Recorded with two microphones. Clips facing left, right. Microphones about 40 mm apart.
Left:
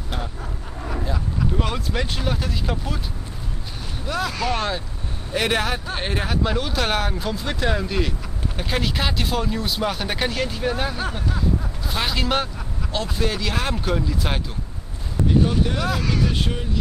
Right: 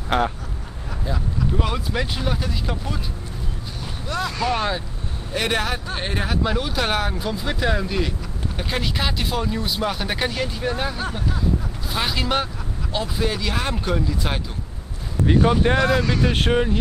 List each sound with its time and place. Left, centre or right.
0.1 s speech: right
1.0 s speech: centre
4.1 s speech: centre
15.3 s speech: right
15.8 s speech: centre
16.3 s speech: right